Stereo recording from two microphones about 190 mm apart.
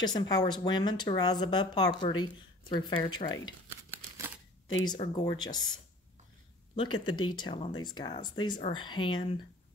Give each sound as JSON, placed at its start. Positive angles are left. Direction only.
{"t": 0.0, "sound": "speech", "side_deg": 20}
{"t": 3.7, "sound": "a sound", "side_deg": -15}
{"t": 5.1, "sound": "speech", "side_deg": 25}
{"t": 6.7, "sound": "speech", "side_deg": 25}